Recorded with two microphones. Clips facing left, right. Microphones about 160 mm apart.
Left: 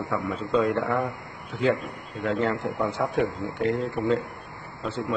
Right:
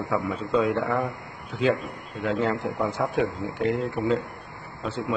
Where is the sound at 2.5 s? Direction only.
20° right (ahead or behind).